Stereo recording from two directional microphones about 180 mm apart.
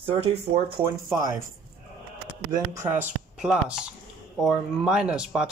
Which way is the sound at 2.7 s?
15° right (ahead or behind).